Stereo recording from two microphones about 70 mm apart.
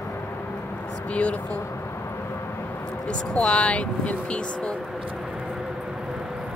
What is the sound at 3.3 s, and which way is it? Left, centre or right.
Speech, centre.